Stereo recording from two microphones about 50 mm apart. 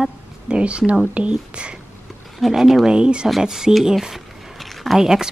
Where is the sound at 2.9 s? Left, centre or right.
Centre.